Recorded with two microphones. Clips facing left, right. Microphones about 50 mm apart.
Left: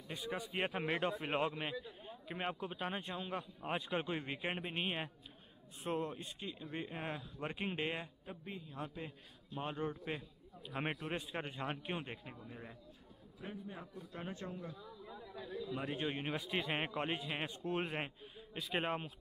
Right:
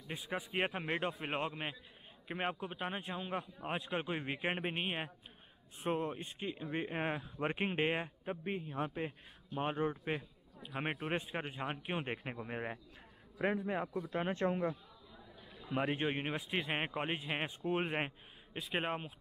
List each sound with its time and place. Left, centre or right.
0.1 s a man's voice: centre
0.7 s a man's voice: centre
5.9 s speech: right
10.7 s a man's voice: centre
11.0 s speech: right
11.3 s a man's voice: centre
12.2 s a man's voice: right
13.4 s a man's voice: right
15.6 s speech: right
16.3 s a man's voice: centre
18.6 s speech: centre